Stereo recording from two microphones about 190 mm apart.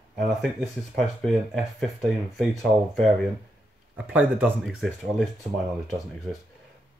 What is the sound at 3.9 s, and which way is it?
Speech, 5° right (ahead or behind).